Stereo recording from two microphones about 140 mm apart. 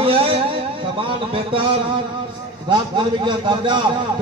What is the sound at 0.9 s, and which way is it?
Speech, 40° right (ahead or behind).